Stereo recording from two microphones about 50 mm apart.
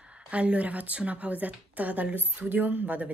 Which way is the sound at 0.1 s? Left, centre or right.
Right.